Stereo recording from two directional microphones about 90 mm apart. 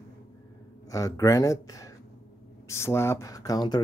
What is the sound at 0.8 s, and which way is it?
Speech, 40° left (ahead or behind).